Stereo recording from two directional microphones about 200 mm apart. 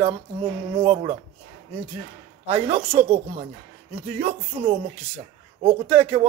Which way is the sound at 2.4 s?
30° right (ahead or behind).